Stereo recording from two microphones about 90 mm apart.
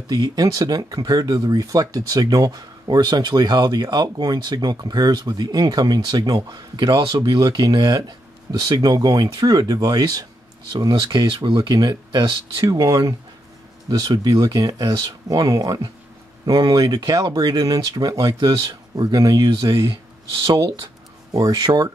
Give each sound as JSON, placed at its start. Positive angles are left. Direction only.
{"t": 0.1, "sound": "speech", "side_deg": -45}
{"t": 7.1, "sound": "speech", "side_deg": -55}
{"t": 12.6, "sound": "speech", "side_deg": -40}
{"t": 21.3, "sound": "speech", "side_deg": -50}